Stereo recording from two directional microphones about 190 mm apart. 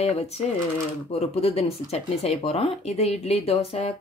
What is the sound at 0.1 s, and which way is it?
Speech, 35° left (ahead or behind).